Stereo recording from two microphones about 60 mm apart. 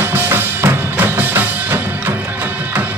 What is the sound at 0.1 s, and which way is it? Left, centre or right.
Music, right.